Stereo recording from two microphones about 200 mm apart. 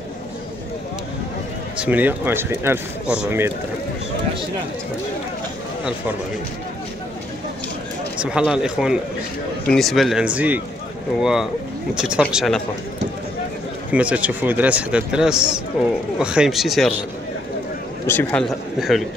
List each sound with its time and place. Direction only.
1.8 s speech: 10° right (ahead or behind)
8.2 s a man's voice: 5° right (ahead or behind)
13.9 s a man's voice: 5° right (ahead or behind)
18.0 s a man's voice: 10° left (ahead or behind)